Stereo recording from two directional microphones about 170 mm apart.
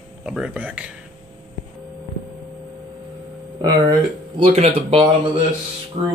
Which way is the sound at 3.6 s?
25° right (ahead or behind).